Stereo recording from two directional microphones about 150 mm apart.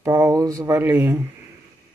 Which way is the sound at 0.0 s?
15° right (ahead or behind).